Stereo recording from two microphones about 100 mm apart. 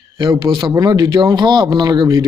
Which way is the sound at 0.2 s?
50° right (ahead or behind).